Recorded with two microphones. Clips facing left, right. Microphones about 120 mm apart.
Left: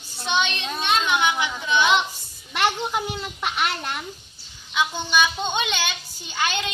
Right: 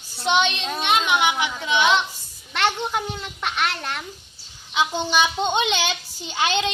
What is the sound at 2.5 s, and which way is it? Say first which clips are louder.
A child's voice: even; 10° left (ahead or behind).